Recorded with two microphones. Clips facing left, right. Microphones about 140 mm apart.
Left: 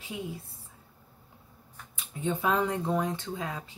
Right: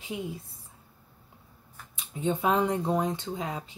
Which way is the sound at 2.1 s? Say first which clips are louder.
Right 2 dB; 20° right (ahead or behind).